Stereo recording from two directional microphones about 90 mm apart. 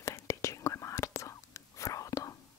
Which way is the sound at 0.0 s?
35° left (ahead or behind).